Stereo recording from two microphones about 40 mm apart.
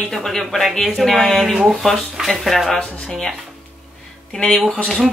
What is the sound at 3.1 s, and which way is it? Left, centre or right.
Speech, centre.